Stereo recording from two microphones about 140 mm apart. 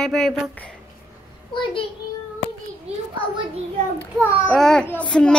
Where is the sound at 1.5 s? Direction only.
35° left (ahead or behind).